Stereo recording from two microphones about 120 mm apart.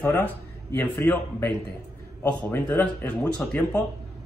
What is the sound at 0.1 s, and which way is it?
Speech, 20° left (ahead or behind).